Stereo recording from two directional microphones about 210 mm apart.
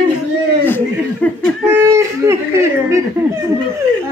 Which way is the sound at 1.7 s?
10° right (ahead or behind).